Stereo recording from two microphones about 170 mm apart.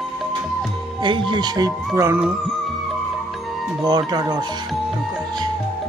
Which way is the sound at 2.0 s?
10° right (ahead or behind).